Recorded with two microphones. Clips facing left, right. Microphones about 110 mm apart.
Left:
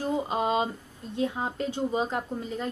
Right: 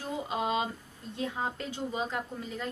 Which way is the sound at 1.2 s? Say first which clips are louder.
Left 5 dB; 30° left (ahead or behind).